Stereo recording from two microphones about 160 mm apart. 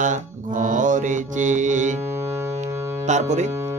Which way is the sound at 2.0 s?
15° right (ahead or behind).